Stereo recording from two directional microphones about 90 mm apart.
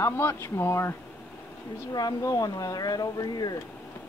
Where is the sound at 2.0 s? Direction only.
45° left (ahead or behind).